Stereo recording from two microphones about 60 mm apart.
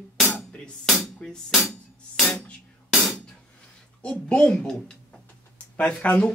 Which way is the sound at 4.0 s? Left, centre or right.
Centre.